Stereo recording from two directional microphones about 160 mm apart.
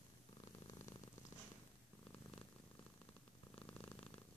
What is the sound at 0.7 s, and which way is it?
Purr, 20° left (ahead or behind).